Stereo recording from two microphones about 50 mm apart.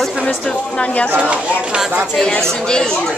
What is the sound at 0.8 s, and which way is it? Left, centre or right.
Speech, left.